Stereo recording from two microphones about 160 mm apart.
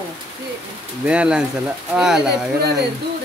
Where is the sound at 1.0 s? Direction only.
5° right (ahead or behind).